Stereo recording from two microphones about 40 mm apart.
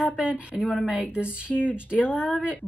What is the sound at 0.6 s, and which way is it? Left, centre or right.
Speech, centre.